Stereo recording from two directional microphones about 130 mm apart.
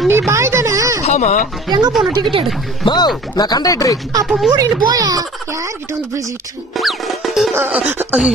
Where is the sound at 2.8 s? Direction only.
35° left (ahead or behind).